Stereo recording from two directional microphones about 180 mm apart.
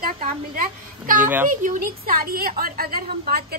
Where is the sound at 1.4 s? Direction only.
45° right (ahead or behind).